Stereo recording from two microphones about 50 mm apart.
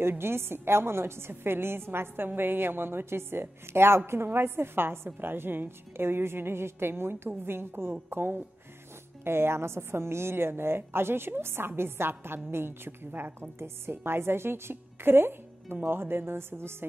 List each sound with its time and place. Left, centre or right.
0.2 s a woman's voice: right